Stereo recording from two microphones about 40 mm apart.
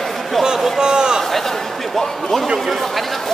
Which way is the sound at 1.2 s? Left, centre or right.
Centre.